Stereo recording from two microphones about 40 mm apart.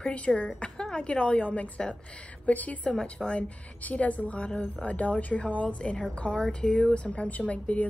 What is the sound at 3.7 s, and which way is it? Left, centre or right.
A woman's voice, left.